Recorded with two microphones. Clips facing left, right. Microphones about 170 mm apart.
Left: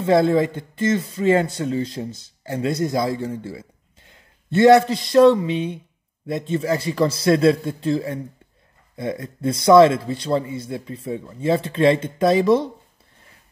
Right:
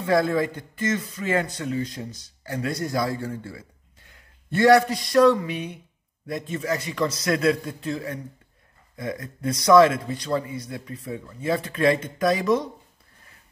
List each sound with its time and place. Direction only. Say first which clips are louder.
0.0 s speech: left 5 dB; 25° left (ahead or behind)